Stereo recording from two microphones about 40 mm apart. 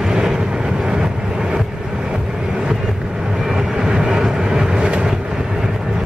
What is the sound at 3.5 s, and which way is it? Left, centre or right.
Vehicle, centre.